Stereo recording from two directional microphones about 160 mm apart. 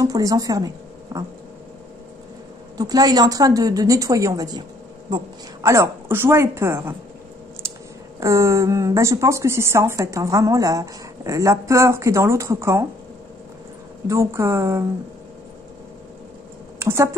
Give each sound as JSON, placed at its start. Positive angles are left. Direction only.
{"t": 0.0, "sound": "speech", "side_deg": -20}
{"t": 2.8, "sound": "a woman's voice", "side_deg": -25}
{"t": 8.2, "sound": "a woman's voice", "side_deg": -20}
{"t": 14.0, "sound": "a woman's voice", "side_deg": -20}
{"t": 16.8, "sound": "speech", "side_deg": -15}